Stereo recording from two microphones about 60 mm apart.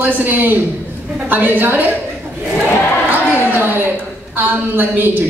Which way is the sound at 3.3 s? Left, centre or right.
Left.